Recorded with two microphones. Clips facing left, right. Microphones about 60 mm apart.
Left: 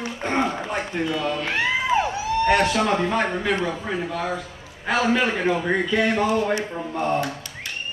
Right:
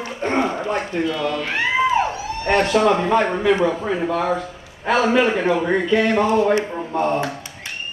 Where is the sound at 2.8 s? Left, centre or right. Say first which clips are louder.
Right 5 dB; centre.